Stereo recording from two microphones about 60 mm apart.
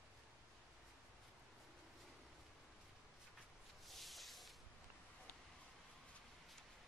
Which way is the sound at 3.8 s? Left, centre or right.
Centre.